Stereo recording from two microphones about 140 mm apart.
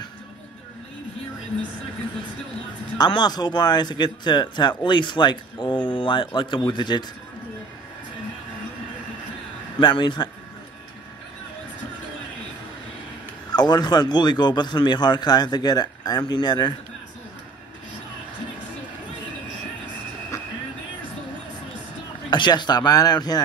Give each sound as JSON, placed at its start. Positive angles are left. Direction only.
{"t": 3.0, "sound": "a man's voice", "side_deg": 30}
{"t": 9.8, "sound": "a man's voice", "side_deg": 35}
{"t": 13.5, "sound": "a man's voice", "side_deg": 30}
{"t": 22.3, "sound": "speech", "side_deg": 35}